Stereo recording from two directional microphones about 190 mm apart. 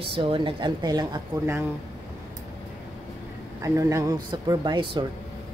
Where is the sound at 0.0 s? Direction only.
30° right (ahead or behind).